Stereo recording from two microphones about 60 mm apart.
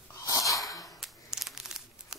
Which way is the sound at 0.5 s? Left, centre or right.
Left.